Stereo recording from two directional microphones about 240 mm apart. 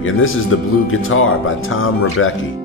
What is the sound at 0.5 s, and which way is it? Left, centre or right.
Speech, left.